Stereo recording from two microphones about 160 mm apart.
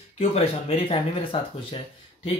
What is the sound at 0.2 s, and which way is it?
Speech, 40° left (ahead or behind).